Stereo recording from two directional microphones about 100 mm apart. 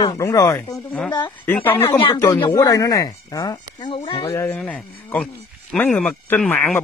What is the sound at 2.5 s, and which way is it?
Speech, 35° left (ahead or behind).